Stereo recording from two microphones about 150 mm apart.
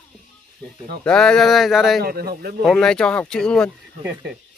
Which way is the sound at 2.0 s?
90° right.